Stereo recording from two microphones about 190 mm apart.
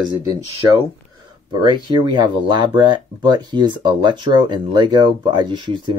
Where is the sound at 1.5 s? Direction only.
25° right (ahead or behind).